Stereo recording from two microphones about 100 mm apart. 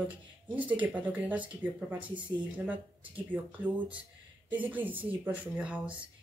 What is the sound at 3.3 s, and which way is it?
Speech, 15° right (ahead or behind).